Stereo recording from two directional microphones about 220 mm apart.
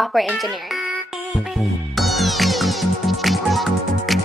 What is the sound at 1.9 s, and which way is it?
Music, centre (ahead or behind).